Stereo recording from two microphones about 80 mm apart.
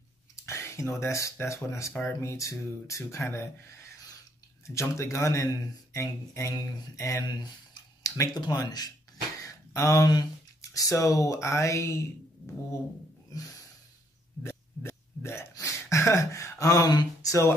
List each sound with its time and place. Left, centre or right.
0.5 s speech: left
7.3 s tick-tock: left
8.4 s speech: left
9.4 s a sound: left
10.1 s speech: left
13.3 s snort: left
14.4 s burping: left
15.5 s a sound: left